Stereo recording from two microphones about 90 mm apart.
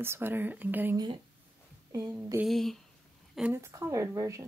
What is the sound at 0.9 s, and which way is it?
Speech, 55° right (ahead or behind).